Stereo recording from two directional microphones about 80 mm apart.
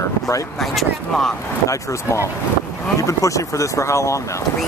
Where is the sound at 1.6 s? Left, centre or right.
Left.